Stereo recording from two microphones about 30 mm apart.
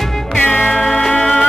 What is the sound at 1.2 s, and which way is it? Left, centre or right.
Music, left.